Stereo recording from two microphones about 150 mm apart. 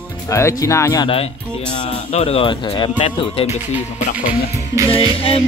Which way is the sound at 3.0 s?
40° left (ahead or behind).